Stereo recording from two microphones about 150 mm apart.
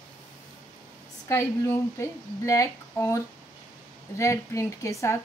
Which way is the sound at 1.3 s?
20° left (ahead or behind).